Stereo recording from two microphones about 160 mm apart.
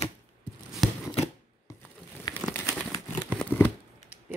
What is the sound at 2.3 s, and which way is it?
Crumpling, 20° left (ahead or behind).